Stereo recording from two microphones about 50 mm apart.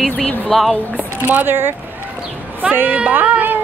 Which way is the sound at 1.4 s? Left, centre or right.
Right.